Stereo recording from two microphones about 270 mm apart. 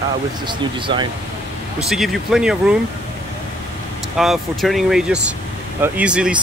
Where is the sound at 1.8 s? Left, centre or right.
Centre.